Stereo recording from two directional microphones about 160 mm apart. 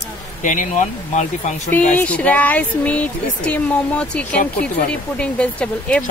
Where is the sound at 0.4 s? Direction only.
50° left (ahead or behind).